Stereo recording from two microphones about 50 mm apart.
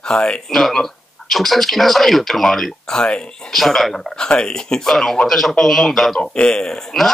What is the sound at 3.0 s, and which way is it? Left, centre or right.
Speech, centre.